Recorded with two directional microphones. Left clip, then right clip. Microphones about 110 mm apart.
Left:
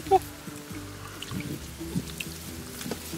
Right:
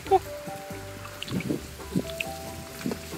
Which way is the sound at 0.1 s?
20° left (ahead or behind).